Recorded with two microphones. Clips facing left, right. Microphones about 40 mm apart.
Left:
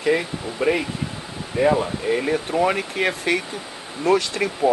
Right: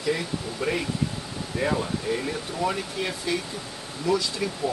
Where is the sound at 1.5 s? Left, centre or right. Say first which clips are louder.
Left 7 dB; left.